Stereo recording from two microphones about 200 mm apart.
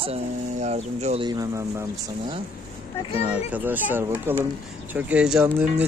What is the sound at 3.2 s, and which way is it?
A child's voice, 5° right (ahead or behind).